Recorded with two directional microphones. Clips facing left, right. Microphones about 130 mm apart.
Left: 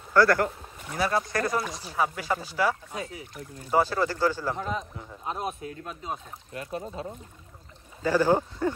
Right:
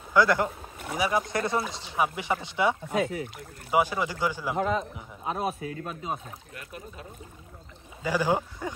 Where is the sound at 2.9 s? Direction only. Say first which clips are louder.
Right 9 dB; 70° right (ahead or behind).